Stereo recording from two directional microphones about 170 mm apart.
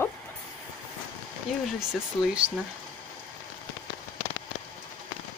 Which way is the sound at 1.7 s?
5° right (ahead or behind).